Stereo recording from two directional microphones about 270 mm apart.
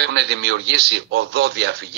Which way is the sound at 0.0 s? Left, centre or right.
Right.